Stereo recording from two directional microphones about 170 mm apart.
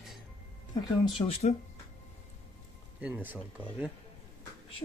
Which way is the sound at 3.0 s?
10° right (ahead or behind).